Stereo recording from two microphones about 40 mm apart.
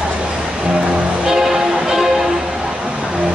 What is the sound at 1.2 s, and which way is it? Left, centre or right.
Music, centre.